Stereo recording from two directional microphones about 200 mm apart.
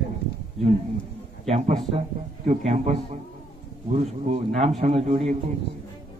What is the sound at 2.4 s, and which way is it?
A man's voice, 40° right (ahead or behind).